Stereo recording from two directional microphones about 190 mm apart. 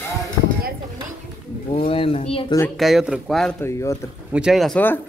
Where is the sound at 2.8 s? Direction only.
Centre (ahead or behind).